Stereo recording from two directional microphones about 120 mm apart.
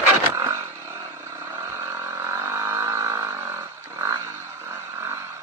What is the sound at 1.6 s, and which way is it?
Vehicle, 20° right (ahead or behind).